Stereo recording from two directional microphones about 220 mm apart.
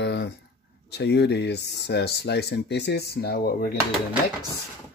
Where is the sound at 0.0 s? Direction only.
50° left (ahead or behind).